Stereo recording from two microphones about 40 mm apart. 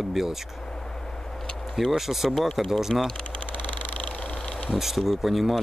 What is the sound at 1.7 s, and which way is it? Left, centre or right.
Speech, centre.